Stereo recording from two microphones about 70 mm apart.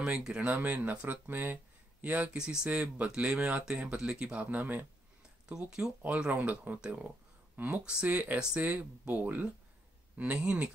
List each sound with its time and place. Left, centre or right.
0.0 s speech: centre
0.4 s speech: right
2.3 s speech: centre
6.0 s speech: centre